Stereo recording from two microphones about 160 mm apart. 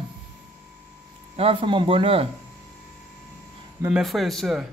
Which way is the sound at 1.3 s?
35° right (ahead or behind).